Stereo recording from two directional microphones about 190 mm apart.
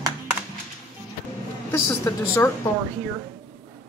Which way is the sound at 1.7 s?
15° left (ahead or behind).